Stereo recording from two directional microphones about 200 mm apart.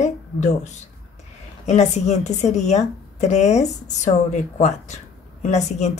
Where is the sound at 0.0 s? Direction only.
35° left (ahead or behind).